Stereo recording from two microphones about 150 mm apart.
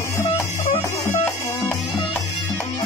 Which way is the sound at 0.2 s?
50° left (ahead or behind).